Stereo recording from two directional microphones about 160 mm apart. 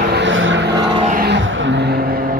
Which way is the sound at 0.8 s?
30° right (ahead or behind).